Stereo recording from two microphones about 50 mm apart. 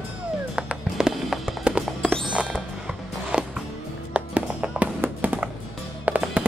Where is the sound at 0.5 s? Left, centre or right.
Centre; by 5.4 s right.